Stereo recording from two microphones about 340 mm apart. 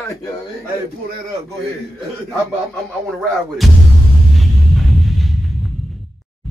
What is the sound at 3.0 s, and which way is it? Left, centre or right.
Speech, centre.